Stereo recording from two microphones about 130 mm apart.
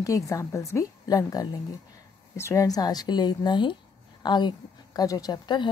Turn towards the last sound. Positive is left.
turn(degrees=35)  # may be behind; listen again after turning